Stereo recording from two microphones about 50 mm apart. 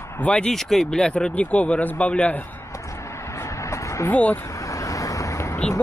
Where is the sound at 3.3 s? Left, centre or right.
Left.